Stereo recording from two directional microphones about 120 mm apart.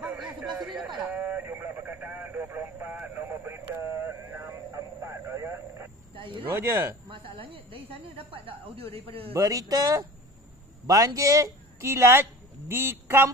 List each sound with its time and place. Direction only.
0.0 s a sound: 10° right (ahead or behind)
1.1 s radio: 15° right (ahead or behind)
6.5 s speech: 20° right (ahead or behind)
7.1 s a sound: 50° right (ahead or behind)
8.5 s a man's voice: 50° right (ahead or behind)
9.3 s speech: 30° right (ahead or behind)